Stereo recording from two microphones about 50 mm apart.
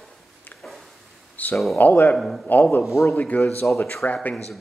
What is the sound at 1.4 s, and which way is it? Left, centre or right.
Speech, left.